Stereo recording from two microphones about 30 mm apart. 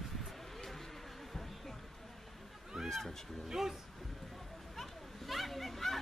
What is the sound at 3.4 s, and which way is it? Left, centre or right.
Speech, centre.